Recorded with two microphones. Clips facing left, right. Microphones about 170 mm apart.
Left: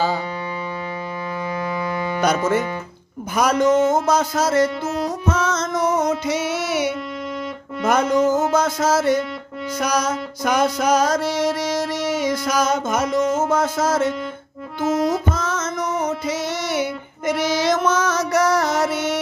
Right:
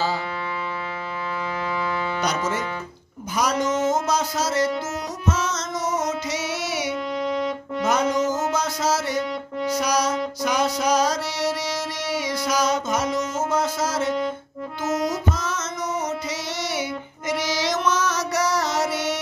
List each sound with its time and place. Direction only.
2.1 s music: 55° left (ahead or behind)